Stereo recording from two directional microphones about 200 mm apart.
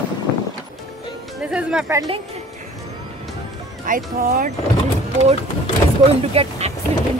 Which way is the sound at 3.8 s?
45° right (ahead or behind).